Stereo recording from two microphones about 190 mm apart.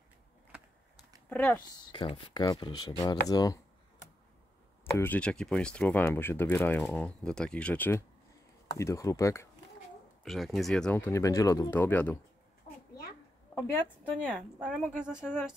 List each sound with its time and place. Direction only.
1.3 s speech: 5° left (ahead or behind)
1.9 s speech: 25° left (ahead or behind)
4.9 s speech: 10° left (ahead or behind)
10.2 s speech: centre (ahead or behind)
13.8 s speech: centre (ahead or behind)